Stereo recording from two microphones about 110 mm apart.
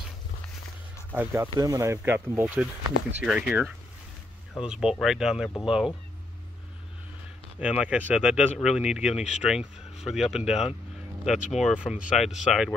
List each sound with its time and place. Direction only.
1.1 s speech: 20° right (ahead or behind)
1.6 s speech: 30° right (ahead or behind)
2.1 s speech: 15° right (ahead or behind)
7.5 s speech: 10° right (ahead or behind)